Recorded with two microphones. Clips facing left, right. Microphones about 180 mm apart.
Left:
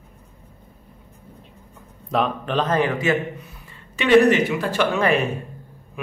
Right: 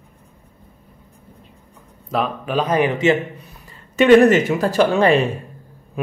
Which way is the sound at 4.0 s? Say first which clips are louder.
Right 4 dB; 45° right (ahead or behind).